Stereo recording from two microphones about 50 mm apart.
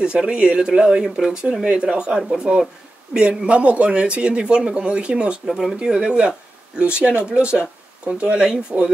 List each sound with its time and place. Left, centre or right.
0.0 s speech: centre
5.5 s speech: centre
5.9 s speech: centre